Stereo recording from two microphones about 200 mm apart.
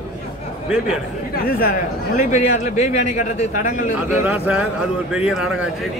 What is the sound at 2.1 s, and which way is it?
A man's voice, 35° left (ahead or behind).